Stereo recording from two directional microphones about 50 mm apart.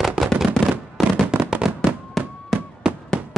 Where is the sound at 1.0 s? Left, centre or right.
Centre.